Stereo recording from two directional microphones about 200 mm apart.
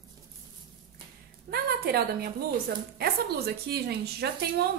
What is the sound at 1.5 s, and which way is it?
A woman's voice, 50° right (ahead or behind).